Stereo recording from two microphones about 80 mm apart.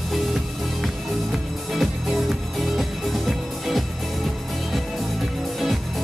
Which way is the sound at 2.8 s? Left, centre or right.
Centre.